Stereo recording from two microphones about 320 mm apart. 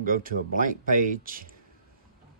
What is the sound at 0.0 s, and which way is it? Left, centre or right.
Speech, right.